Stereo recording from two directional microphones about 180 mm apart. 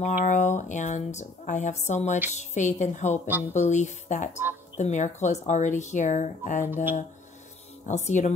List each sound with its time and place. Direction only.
0.0 s speech: 40° left (ahead or behind)
6.6 s speech: 10° right (ahead or behind)
7.8 s speech: 40° left (ahead or behind)